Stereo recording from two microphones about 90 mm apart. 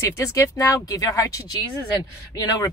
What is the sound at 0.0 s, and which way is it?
Speech, 35° left (ahead or behind).